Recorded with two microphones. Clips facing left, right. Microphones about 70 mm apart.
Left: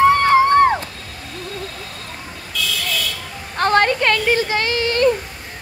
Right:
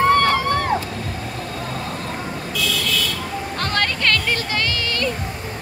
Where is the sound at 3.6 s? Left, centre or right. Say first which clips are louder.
Left 8 dB; left.